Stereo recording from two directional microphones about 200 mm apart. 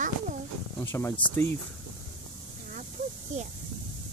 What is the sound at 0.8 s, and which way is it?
Speech, 10° left (ahead or behind).